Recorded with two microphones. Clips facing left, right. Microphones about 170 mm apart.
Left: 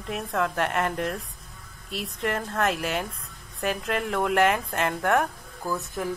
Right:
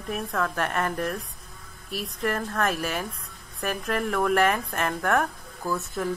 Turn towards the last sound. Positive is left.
turn(degrees=15)  # may be behind; listen again after turning